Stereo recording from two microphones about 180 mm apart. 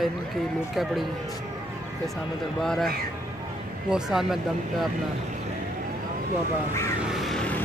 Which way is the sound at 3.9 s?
Centre (ahead or behind).